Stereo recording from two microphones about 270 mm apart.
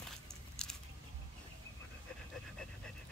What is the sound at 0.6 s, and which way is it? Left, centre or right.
Biting, centre.